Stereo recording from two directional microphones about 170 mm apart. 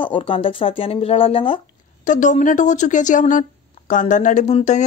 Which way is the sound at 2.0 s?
45° left (ahead or behind).